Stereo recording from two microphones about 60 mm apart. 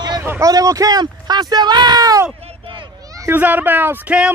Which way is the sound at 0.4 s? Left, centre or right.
Right.